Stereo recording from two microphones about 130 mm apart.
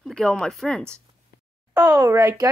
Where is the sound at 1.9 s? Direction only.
25° right (ahead or behind).